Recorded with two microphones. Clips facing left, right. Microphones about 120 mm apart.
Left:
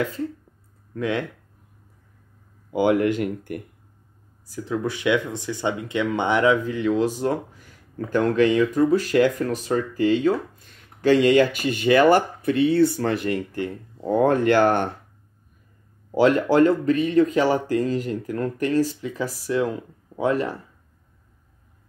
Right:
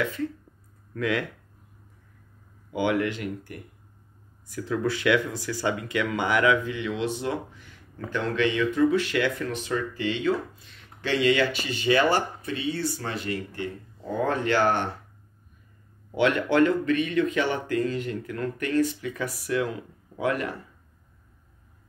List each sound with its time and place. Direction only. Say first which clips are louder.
0.9 s speech: left 2 dB; 25° left (ahead or behind)
2.7 s speech: left 6 dB; 40° left (ahead or behind)
4.5 s speech: left 1 dB; 20° left (ahead or behind); by 14.9 s 50° left (ahead or behind)
16.2 s speech: left 5 dB; 35° left (ahead or behind)